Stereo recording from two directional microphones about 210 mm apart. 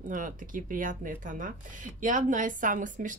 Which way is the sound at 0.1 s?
40° right (ahead or behind).